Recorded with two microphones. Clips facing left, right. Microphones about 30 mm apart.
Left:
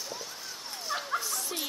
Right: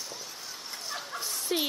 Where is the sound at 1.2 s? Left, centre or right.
Right.